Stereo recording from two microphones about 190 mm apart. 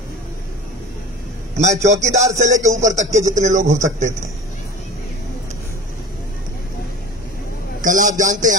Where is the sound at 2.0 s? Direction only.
35° right (ahead or behind).